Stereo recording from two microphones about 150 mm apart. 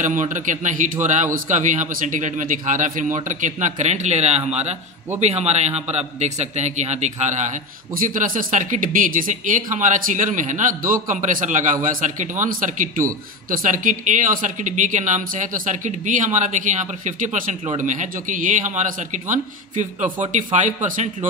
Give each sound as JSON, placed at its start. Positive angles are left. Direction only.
{"t": 0.0, "sound": "a man's voice", "side_deg": -55}
{"t": 7.9, "sound": "speech", "side_deg": -65}